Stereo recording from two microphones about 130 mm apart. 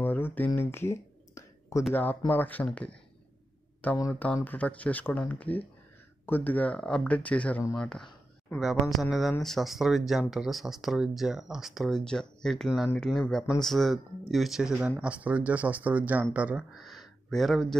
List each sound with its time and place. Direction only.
0.0 s a sound: 15° left (ahead or behind)
2.0 s speech: 15° left (ahead or behind)
4.1 s speech: 10° left (ahead or behind)